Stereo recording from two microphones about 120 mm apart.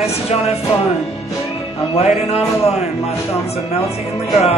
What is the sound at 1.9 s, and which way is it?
Speech, 60° left (ahead or behind).